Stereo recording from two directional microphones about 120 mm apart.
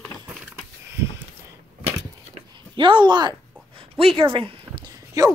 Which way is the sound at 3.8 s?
50° right (ahead or behind).